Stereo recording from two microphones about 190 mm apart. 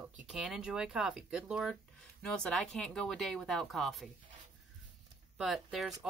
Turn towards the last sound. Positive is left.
turn(degrees=0)  # may be behind; listen again after turning